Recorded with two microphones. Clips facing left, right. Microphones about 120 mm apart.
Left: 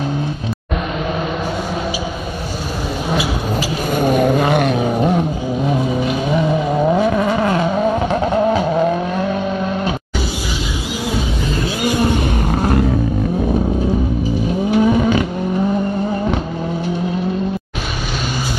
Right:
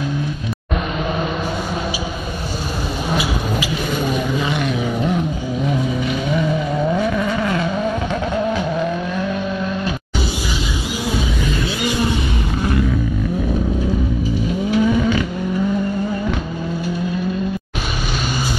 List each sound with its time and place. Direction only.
3.5 s vehicle: 45° left (ahead or behind)
5.7 s vehicle: 30° left (ahead or behind)
11.8 s vehicle: 50° left (ahead or behind)
14.8 s vehicle: 35° left (ahead or behind)